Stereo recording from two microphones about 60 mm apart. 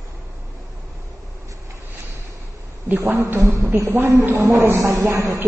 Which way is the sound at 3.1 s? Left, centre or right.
Right.